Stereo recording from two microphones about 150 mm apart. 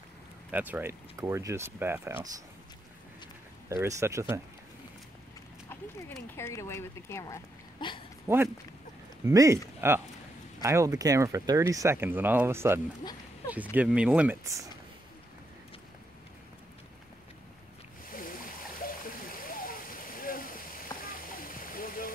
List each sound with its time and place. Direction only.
0.5 s speech: 10° right (ahead or behind)
3.6 s speech: 20° right (ahead or behind)
6.3 s speech: 20° left (ahead or behind)
7.8 s speech: 30° left (ahead or behind)
8.3 s speech: 15° right (ahead or behind)
14.4 s speech: 20° right (ahead or behind)
18.1 s stream: 70° left (ahead or behind)